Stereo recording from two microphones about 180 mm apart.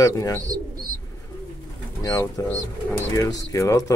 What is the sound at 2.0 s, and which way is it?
Speech, 20° left (ahead or behind).